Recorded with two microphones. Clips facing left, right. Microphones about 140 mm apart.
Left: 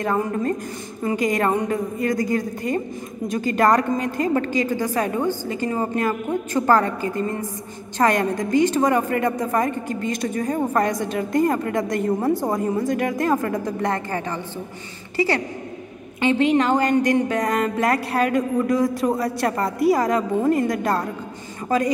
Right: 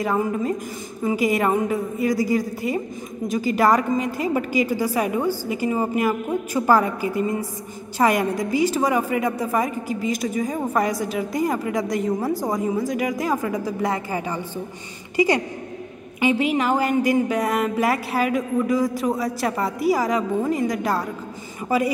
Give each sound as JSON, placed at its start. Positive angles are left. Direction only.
{"t": 0.0, "sound": "a woman's voice", "side_deg": -5}